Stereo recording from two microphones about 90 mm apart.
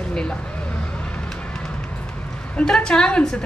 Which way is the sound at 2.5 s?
10° left (ahead or behind).